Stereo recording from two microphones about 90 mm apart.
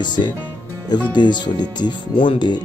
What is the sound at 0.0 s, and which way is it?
Speech, 55° left (ahead or behind).